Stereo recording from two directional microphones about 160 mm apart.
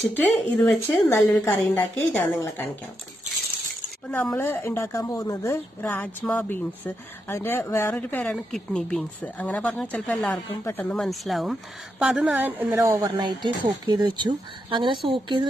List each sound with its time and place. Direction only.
0.1 s a woman's voice: 10° left (ahead or behind)
4.3 s a woman's voice: 15° left (ahead or behind); by 13.2 s 15° right (ahead or behind)
13.2 s speech: 25° right (ahead or behind)